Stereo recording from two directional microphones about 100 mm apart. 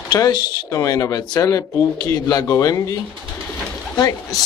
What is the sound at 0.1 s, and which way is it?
Speech, 45° left (ahead or behind).